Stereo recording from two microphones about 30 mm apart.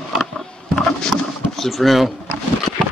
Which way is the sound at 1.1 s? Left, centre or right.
Centre.